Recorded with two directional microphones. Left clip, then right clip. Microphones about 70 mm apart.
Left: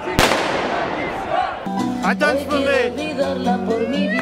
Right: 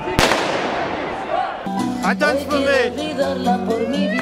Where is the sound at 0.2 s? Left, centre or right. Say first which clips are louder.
Even; centre.